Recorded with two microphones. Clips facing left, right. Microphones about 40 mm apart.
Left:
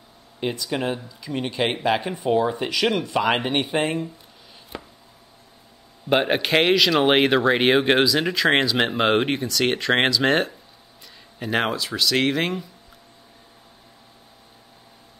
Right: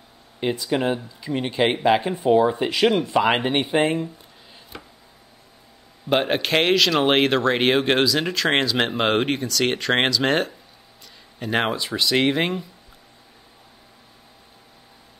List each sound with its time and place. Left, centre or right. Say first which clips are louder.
0.6 s a man's voice: right 3 dB; centre
2.7 s speech: right 3 dB; right
3.2 s a man's voice: even; centre
6.0 s speech: left 1 dB; centre
11.7 s a man's voice: right 1 dB; centre